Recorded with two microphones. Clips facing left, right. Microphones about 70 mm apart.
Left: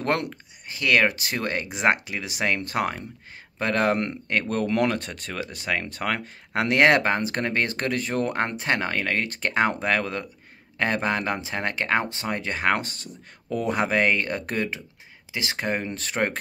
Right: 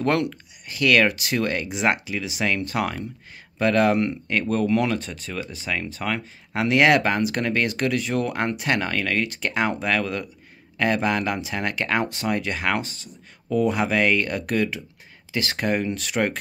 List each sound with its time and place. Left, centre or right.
0.0 s speech: left
0.3 s speech: left
15.3 s speech: centre